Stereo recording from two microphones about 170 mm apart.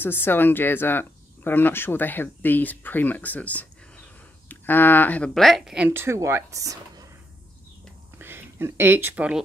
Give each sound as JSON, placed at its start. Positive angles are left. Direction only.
{"t": 0.0, "sound": "speech", "side_deg": 10}
{"t": 5.9, "sound": "speech", "side_deg": -15}
{"t": 8.2, "sound": "speech", "side_deg": -15}